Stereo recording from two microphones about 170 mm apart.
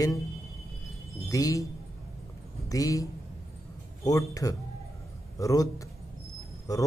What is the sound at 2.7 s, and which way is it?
A man's voice, 20° left (ahead or behind).